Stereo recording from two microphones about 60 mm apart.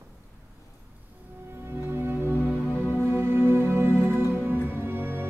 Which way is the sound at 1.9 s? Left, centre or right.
Right.